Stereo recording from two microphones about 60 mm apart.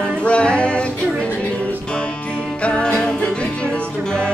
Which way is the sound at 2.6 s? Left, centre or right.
Centre.